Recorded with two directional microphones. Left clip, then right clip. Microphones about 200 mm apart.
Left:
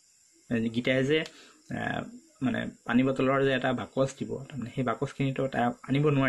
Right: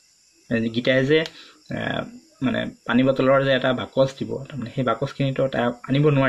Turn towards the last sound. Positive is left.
turn(degrees=20)  # may be behind; listen again after turning